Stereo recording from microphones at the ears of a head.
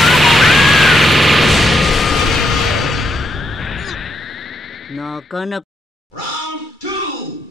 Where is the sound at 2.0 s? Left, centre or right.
Left.